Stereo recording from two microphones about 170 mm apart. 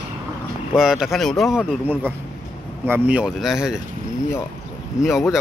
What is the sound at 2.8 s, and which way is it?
Speech, 10° right (ahead or behind).